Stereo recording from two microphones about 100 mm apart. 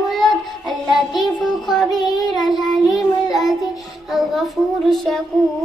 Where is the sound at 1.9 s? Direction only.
45° left (ahead or behind).